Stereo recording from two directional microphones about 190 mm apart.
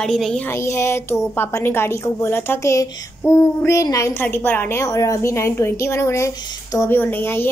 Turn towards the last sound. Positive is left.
turn(degrees=10)  # may be behind; listen again after turning